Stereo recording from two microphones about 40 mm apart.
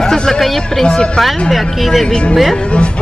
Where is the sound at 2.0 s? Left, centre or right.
Centre.